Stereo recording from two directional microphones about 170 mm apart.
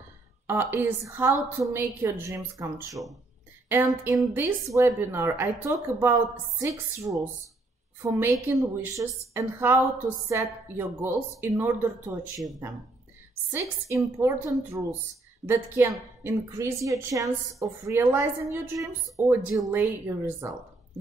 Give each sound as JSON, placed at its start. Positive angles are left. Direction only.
{"t": 0.5, "sound": "a woman's voice", "side_deg": -15}
{"t": 13.5, "sound": "a woman's voice", "side_deg": -15}